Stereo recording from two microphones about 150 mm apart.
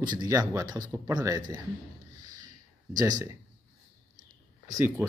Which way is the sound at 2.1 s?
25° right (ahead or behind).